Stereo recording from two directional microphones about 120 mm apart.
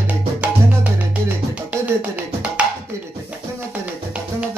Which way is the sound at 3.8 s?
10° right (ahead or behind).